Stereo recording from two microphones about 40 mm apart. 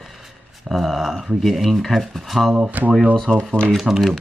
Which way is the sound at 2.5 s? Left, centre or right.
Right.